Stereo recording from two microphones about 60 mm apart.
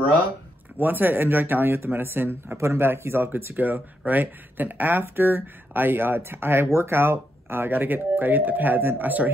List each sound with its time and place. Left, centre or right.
0.7 s speech: right
2.5 s speech: right